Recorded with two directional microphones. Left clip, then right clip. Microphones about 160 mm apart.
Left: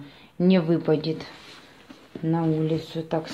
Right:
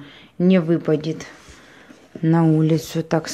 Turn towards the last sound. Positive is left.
turn(degrees=-45)  # may be behind; listen again after turning